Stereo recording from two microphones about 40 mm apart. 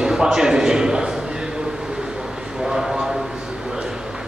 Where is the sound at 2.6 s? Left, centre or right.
Centre.